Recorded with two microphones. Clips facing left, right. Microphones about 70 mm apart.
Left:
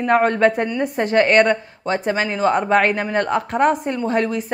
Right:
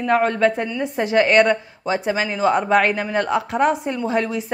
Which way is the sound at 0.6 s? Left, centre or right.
Left.